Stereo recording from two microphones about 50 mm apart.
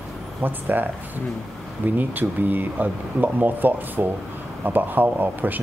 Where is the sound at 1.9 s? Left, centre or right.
Right.